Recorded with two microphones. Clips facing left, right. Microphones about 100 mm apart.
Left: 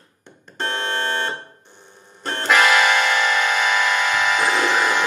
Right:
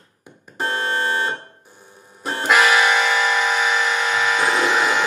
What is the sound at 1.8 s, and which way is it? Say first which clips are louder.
Music: right 1 dB; 5° right (ahead or behind).